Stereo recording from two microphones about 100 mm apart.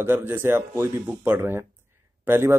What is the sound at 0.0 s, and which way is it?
Speech, 20° right (ahead or behind).